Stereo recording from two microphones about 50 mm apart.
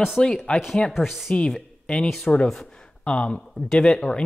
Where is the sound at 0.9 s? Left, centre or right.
Centre.